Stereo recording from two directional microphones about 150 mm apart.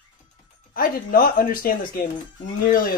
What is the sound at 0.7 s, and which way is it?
Speech, 70° left (ahead or behind).